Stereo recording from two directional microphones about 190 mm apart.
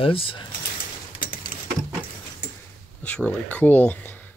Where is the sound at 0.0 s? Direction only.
30° left (ahead or behind).